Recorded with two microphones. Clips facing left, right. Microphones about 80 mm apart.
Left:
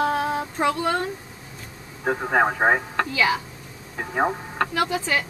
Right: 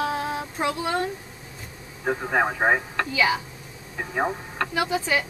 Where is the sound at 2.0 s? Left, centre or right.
Centre.